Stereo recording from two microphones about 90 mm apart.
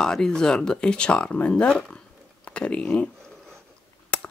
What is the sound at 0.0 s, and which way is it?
Speech, 10° left (ahead or behind).